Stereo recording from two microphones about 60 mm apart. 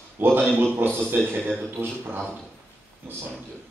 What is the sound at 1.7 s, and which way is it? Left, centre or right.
Speech, right.